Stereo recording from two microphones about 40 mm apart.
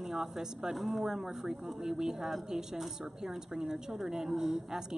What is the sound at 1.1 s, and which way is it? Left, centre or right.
A woman's voice, centre.